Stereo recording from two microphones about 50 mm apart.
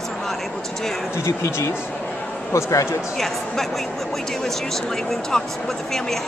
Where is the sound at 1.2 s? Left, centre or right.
Left.